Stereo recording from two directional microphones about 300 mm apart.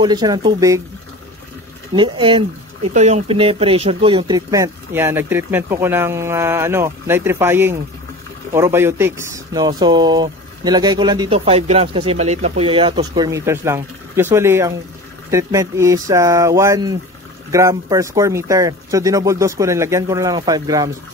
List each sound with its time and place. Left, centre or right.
0.0 s speech: centre
2.0 s speech: centre